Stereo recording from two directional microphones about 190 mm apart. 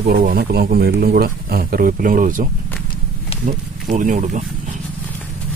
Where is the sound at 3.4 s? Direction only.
45° right (ahead or behind).